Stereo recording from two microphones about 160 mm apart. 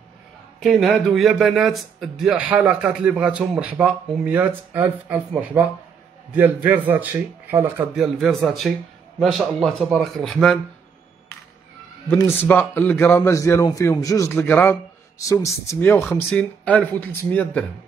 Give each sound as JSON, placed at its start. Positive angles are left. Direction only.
{"t": 0.6, "sound": "a man's voice", "side_deg": 0}
{"t": 7.9, "sound": "speech", "side_deg": 0}
{"t": 12.2, "sound": "a man's voice", "side_deg": 15}